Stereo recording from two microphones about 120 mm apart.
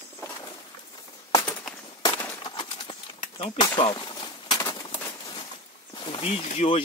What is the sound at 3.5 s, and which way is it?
Speech, 35° left (ahead or behind).